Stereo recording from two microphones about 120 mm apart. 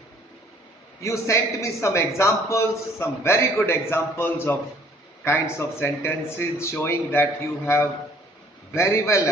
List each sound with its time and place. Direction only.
1.0 s a man's voice: 25° left (ahead or behind)